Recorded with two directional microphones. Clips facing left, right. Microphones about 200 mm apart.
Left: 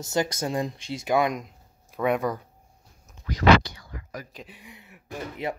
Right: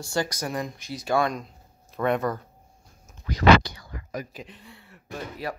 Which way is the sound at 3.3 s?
35° right (ahead or behind).